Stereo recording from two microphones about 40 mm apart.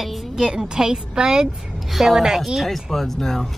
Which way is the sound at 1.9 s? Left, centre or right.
Centre.